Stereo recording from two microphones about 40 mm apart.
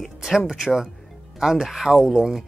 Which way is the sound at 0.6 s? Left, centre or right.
Centre.